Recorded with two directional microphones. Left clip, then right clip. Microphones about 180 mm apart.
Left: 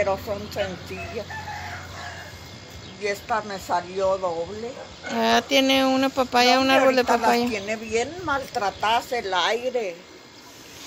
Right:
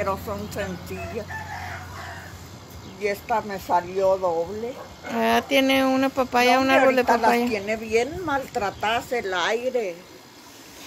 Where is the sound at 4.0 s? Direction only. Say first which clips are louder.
Right 1 dB; 10° right (ahead or behind).